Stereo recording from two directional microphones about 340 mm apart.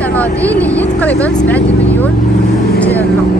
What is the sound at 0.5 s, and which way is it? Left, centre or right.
Speech, centre.